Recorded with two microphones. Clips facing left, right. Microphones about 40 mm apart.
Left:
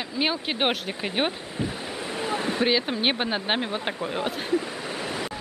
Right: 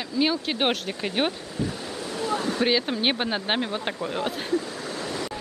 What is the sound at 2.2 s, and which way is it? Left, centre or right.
Speech, left.